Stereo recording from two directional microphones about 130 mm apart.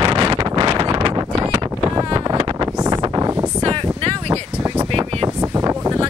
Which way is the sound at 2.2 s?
30° right (ahead or behind).